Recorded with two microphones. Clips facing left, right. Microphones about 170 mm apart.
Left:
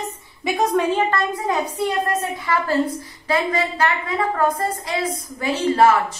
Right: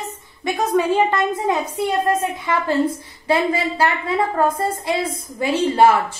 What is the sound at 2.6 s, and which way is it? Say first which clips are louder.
A woman's voice: right 1 dB; 25° right (ahead or behind).